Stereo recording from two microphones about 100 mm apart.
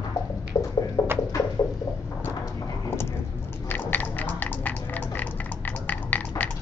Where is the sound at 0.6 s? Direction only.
40° left (ahead or behind).